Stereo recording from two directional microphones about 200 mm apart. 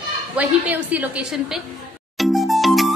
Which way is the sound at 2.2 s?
Centre (ahead or behind).